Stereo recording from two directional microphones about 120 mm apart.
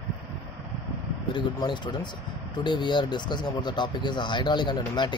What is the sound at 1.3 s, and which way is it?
Speech, 40° left (ahead or behind).